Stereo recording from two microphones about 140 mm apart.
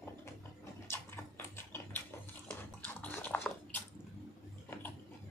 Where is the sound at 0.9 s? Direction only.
15° left (ahead or behind).